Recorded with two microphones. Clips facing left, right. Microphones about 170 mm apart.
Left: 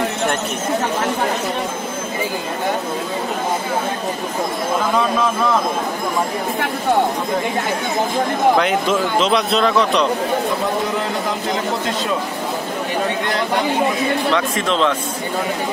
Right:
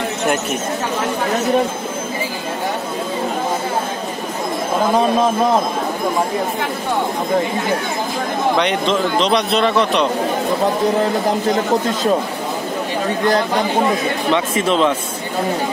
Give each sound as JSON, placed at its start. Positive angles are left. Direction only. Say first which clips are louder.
{"t": 4.9, "sound": "speech", "louder": "right 5 dB", "side_deg": -35}
{"t": 8.5, "sound": "speech", "louder": "even", "side_deg": 5}
{"t": 14.3, "sound": "speech", "louder": "right 2 dB", "side_deg": -5}